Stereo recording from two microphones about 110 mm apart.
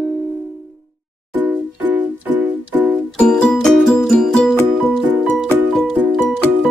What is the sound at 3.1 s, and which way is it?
Music, 5° left (ahead or behind).